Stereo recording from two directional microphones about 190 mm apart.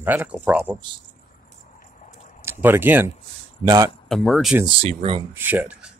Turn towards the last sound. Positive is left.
turn(degrees=-5)  # may be behind; listen again after turning